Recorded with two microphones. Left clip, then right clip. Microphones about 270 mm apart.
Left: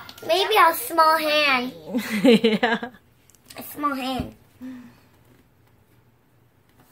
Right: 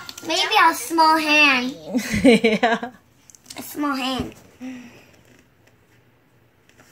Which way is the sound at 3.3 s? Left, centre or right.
Centre.